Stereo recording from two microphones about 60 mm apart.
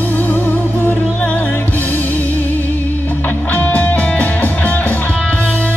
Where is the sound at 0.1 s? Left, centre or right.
Left.